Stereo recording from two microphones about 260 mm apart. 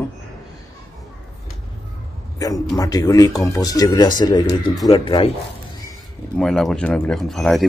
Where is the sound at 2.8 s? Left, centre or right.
Centre.